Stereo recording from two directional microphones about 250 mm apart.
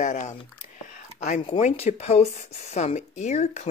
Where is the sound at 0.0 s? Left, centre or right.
Left.